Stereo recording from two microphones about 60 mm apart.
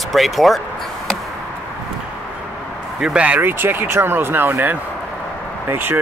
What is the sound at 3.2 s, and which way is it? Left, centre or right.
Speech, right.